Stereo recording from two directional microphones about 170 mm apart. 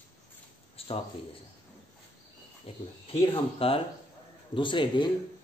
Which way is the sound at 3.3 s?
35° left (ahead or behind).